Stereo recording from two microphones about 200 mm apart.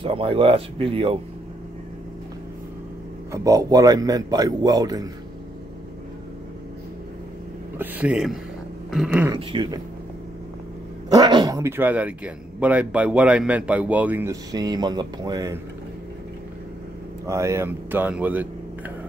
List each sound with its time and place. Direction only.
0.0 s a man's voice: 25° right (ahead or behind)
3.3 s a man's voice: 15° right (ahead or behind)
7.8 s speech: 5° right (ahead or behind)
9.5 s a man's voice: 25° right (ahead or behind)
11.1 s speech: 20° right (ahead or behind)
17.3 s speech: 15° right (ahead or behind)